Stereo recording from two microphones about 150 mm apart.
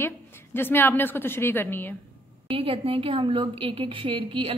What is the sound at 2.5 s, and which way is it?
A woman's voice, 35° right (ahead or behind).